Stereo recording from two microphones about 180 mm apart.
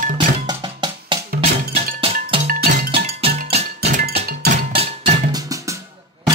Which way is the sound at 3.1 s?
35° right (ahead or behind).